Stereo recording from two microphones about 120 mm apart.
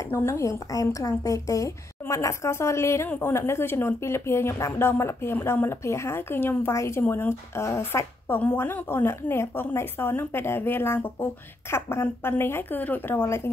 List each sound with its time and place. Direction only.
0.1 s a woman's voice: 20° left (ahead or behind)